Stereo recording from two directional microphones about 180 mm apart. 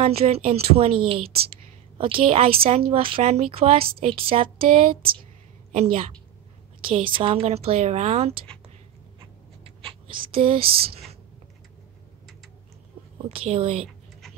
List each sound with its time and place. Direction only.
0.0 s a woman's voice: 35° right (ahead or behind)
5.7 s a woman's voice: 35° right (ahead or behind)
9.8 s whispering: 30° right (ahead or behind)
10.3 s speech: 30° right (ahead or behind)
10.6 s speech: 55° right (ahead or behind)
13.3 s a woman's voice: 35° right (ahead or behind)